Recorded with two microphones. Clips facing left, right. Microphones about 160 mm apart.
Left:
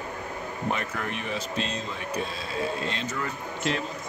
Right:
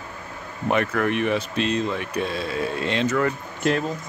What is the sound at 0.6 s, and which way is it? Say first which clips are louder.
Speech: right 10 dB; 65° right (ahead or behind).